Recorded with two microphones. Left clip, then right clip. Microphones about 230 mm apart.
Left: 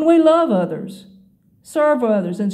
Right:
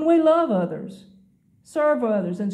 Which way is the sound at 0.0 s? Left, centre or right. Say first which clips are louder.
Left 5 dB; left.